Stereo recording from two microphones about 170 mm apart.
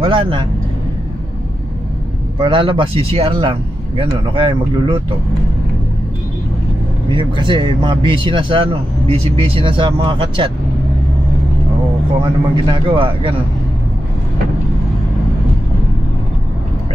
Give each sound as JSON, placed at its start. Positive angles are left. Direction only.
{"t": 0.0, "sound": "a man's voice", "side_deg": -30}
{"t": 2.4, "sound": "a man's voice", "side_deg": -30}
{"t": 7.1, "sound": "a man's voice", "side_deg": -30}
{"t": 12.2, "sound": "a man's voice", "side_deg": -30}